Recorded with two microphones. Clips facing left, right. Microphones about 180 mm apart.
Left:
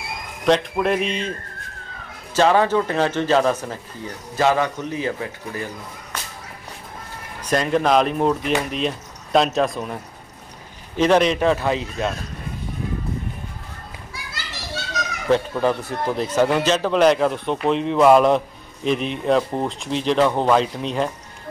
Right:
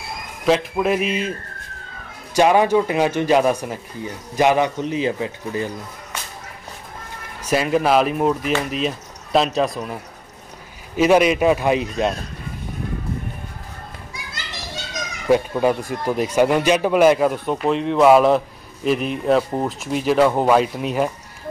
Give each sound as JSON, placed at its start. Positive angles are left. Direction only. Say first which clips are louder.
{"t": 0.5, "sound": "speech", "louder": "even", "side_deg": -5}
{"t": 2.3, "sound": "a man's voice", "louder": "right 2 dB", "side_deg": -15}
{"t": 7.4, "sound": "speech", "louder": "right 1 dB", "side_deg": -5}
{"t": 11.0, "sound": "speech", "louder": "right 2 dB", "side_deg": -10}
{"t": 14.1, "sound": "children playing", "louder": "left 1 dB", "side_deg": -20}
{"t": 15.2, "sound": "speech", "louder": "right 2 dB", "side_deg": -10}